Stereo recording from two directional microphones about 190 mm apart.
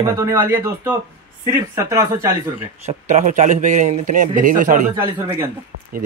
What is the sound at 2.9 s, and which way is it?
Speech, 40° right (ahead or behind).